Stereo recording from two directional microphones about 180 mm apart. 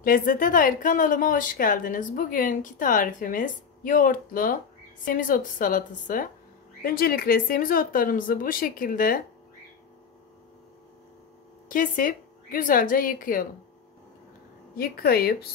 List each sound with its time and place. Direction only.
0.0 s a woman's voice: 50° left (ahead or behind)
11.7 s a woman's voice: 50° left (ahead or behind)
14.8 s a woman's voice: 60° left (ahead or behind)